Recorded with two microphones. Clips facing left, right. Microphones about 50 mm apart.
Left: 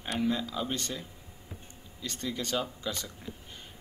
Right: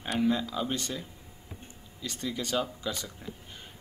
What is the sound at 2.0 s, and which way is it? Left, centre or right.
Speech, centre.